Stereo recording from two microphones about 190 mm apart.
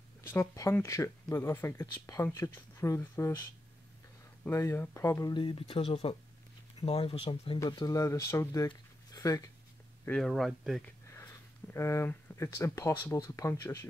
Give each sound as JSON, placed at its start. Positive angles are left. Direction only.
{"t": 0.2, "sound": "speech", "side_deg": 15}
{"t": 4.5, "sound": "speech", "side_deg": 15}
{"t": 5.3, "sound": "speech", "side_deg": 25}
{"t": 10.0, "sound": "speech", "side_deg": 5}
{"t": 11.1, "sound": "speech", "side_deg": 15}